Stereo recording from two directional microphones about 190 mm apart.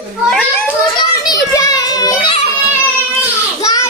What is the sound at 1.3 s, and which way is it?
Children playing, 20° left (ahead or behind).